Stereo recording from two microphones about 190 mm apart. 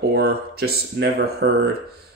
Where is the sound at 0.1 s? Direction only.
55° right (ahead or behind).